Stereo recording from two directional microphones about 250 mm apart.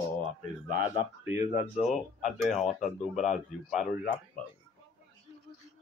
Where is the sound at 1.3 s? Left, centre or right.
Left.